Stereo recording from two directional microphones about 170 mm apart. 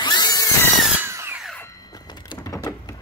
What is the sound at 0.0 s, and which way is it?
Tools, 25° left (ahead or behind).